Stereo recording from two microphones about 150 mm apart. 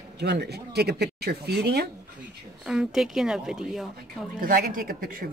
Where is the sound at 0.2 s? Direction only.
90° right.